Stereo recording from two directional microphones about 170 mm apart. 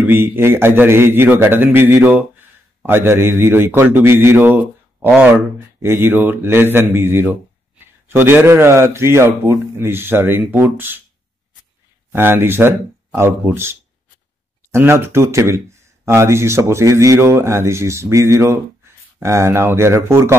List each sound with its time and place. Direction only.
0.0 s a man's voice: 10° right (ahead or behind)
12.1 s a man's voice: 10° right (ahead or behind)